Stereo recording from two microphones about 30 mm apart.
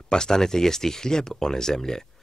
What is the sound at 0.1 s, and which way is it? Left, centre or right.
Speech, left.